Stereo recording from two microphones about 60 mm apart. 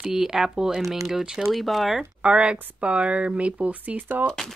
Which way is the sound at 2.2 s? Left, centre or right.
Centre.